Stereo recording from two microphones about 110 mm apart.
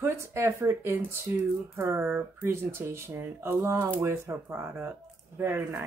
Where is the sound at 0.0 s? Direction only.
25° right (ahead or behind).